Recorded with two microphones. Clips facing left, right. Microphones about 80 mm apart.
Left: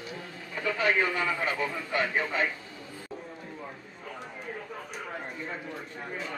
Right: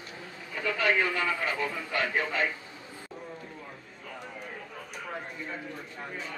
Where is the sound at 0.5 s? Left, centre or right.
Centre.